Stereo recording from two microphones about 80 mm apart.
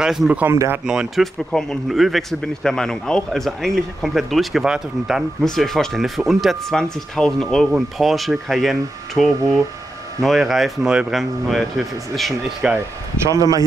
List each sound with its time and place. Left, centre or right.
0.0 s speech: centre
0.5 s speech: right
0.8 s speech: centre
1.2 s speech: centre
5.4 s speech: centre
12.6 s speech: centre
13.3 s speech: right